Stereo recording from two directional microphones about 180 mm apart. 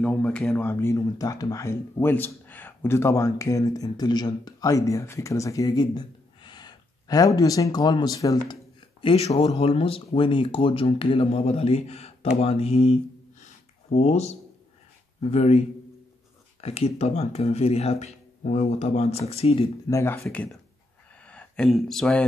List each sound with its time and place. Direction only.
0.0 s speech: 5° left (ahead or behind)
9.0 s speech: 35° left (ahead or behind)
13.4 s a sound: 40° left (ahead or behind)
15.1 s speech: 35° left (ahead or behind)
16.6 s speech: 35° left (ahead or behind)
19.9 s speech: 15° left (ahead or behind)
21.3 s speech: 5° left (ahead or behind)